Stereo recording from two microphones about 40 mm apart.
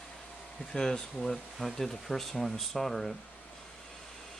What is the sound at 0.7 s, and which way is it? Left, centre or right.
Speech, centre.